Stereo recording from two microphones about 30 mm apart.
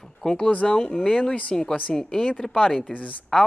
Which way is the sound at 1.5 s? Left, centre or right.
Centre.